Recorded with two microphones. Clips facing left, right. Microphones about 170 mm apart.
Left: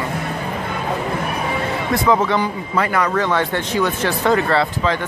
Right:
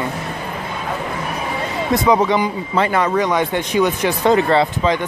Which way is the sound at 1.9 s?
15° right (ahead or behind).